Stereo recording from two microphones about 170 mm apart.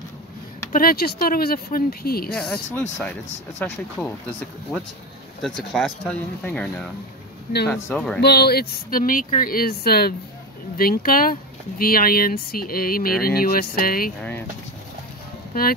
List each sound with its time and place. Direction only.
0.7 s speech: 60° left (ahead or behind)
2.7 s speech: 10° left (ahead or behind)
8.2 s speech: 70° left (ahead or behind)